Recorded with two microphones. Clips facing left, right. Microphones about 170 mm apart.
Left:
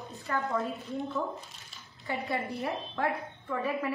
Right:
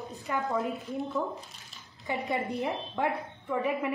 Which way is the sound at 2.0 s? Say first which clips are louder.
Right 2 dB; 20° right (ahead or behind).